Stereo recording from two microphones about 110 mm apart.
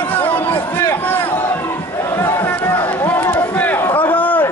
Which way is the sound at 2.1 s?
20° left (ahead or behind).